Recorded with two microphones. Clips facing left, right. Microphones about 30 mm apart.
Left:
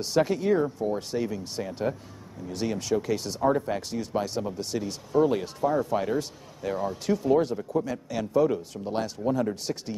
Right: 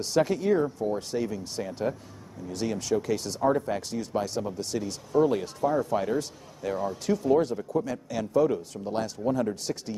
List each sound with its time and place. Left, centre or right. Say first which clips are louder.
0.0 s speech: even; centre